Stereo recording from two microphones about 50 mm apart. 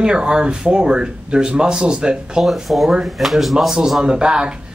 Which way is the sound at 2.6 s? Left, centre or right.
Centre.